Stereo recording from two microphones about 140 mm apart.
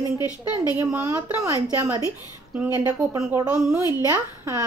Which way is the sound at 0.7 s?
20° right (ahead or behind).